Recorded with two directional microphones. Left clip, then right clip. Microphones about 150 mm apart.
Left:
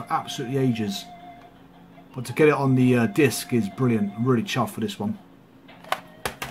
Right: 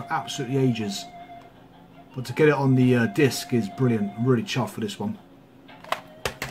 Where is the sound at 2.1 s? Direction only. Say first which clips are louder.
Left 1 dB; 35° left (ahead or behind).